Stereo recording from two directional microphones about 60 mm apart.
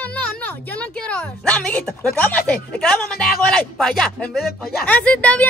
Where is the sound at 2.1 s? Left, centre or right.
Left.